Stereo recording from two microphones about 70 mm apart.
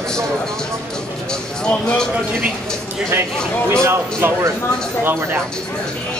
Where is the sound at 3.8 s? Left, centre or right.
Right.